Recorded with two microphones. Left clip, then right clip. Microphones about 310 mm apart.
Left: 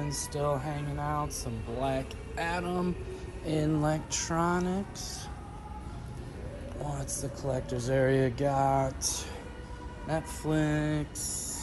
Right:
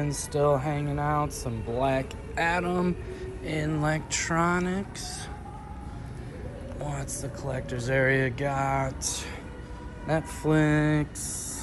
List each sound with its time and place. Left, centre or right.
0.0 s speech: centre
6.8 s speech: centre